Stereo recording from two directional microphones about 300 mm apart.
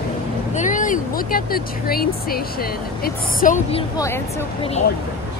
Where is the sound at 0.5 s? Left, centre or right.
Left.